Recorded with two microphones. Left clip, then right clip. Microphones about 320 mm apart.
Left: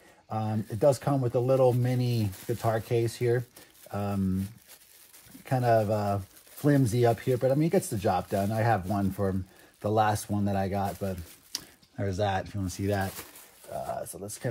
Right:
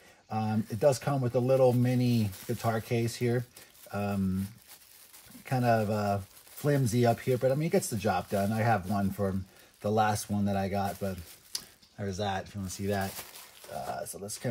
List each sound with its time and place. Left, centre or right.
0.3 s speech: centre
2.3 s speech: centre
2.9 s speech: centre
5.5 s speech: centre
11.0 s a sound: centre
12.0 s speech: left